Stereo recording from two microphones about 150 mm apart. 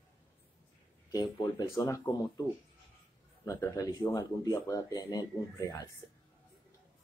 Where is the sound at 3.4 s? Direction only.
20° left (ahead or behind).